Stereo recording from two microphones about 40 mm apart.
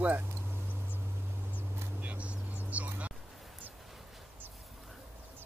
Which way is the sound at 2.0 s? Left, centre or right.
Right.